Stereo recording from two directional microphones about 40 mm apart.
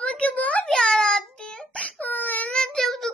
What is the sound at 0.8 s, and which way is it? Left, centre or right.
Child singing, centre.